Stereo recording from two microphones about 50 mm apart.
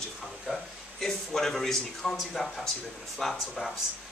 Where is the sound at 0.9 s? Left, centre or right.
Centre.